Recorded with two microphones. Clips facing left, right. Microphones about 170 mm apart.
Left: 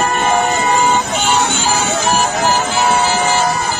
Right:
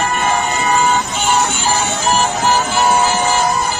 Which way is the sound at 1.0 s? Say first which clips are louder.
Left 1 dB; 70° left (ahead or behind).